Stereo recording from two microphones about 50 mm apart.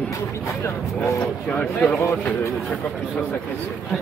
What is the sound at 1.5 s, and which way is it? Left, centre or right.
Speech, left.